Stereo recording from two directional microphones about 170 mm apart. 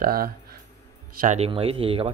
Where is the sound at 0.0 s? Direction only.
60° right (ahead or behind).